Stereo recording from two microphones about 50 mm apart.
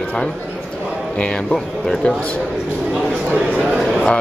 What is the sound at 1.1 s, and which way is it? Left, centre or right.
Speech, centre.